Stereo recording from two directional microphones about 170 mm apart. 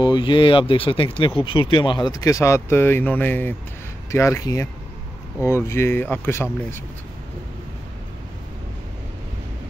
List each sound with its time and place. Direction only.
0.0 s speech: 25° left (ahead or behind)